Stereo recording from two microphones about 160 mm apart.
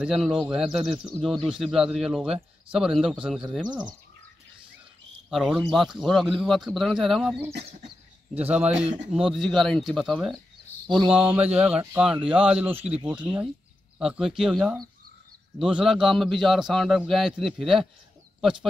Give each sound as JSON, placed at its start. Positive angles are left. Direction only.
{"t": 0.0, "sound": "a man's voice", "side_deg": 0}
{"t": 5.3, "sound": "a man's voice", "side_deg": 0}
{"t": 8.4, "sound": "speech", "side_deg": -10}
{"t": 8.8, "sound": "a man's voice", "side_deg": -50}
{"t": 9.1, "sound": "a man's voice", "side_deg": 0}